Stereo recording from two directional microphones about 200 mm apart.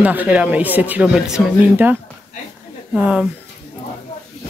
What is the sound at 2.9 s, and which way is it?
Speech, 5° right (ahead or behind).